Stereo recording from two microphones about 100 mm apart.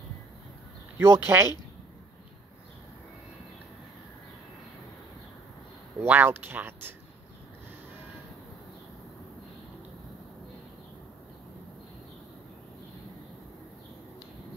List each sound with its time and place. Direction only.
0.9 s speech: 25° right (ahead or behind)
5.9 s speech: 20° right (ahead or behind)